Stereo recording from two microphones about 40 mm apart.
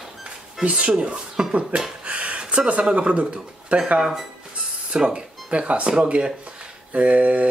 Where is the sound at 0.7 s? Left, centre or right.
Right.